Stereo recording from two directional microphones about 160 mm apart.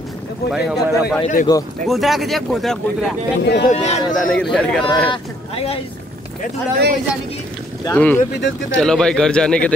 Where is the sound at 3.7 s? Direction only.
45° left (ahead or behind).